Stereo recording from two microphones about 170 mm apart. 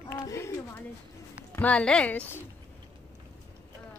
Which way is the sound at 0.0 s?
15° left (ahead or behind).